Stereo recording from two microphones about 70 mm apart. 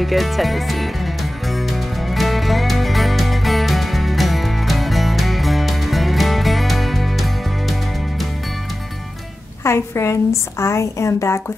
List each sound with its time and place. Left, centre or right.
0.0 s music: centre
9.6 s a woman's voice: left